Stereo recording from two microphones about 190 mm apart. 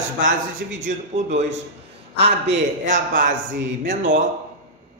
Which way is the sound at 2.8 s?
45° right (ahead or behind).